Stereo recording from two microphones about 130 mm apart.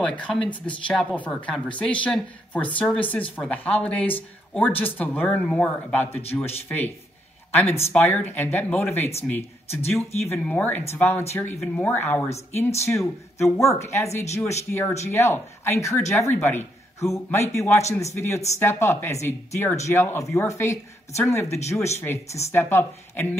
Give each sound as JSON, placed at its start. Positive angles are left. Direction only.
{"t": 0.0, "sound": "speech", "side_deg": 10}
{"t": 7.9, "sound": "speech", "side_deg": 15}